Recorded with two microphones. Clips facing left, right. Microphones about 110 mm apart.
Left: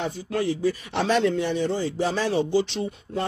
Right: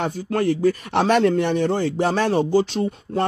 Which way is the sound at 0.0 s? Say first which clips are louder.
Right 4 dB; 50° right (ahead or behind).